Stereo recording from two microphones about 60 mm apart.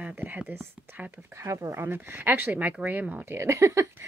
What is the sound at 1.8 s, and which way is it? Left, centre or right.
Speech, right.